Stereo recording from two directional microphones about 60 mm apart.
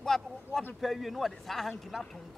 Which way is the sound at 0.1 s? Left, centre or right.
Centre.